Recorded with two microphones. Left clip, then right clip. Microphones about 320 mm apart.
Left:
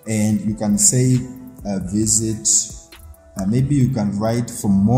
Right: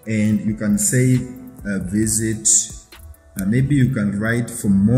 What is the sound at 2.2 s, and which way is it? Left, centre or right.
Speech, centre.